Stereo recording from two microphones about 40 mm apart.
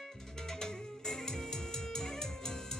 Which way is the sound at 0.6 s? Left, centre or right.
Centre.